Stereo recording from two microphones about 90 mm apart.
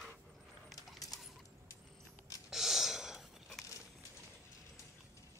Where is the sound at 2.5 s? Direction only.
5° right (ahead or behind).